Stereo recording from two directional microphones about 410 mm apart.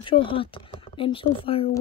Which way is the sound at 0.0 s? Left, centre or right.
Centre.